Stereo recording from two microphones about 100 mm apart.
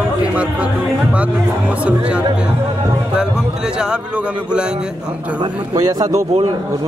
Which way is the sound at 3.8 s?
10° right (ahead or behind).